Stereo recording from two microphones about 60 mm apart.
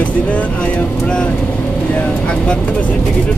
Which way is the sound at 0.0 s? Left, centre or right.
Left.